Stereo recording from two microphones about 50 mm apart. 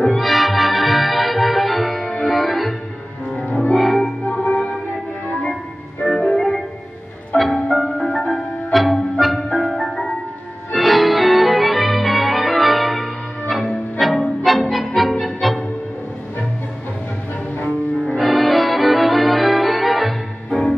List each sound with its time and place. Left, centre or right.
0.0 s music: centre
3.7 s music: centre
4.2 s music: left
6.0 s music: centre
18.1 s music: centre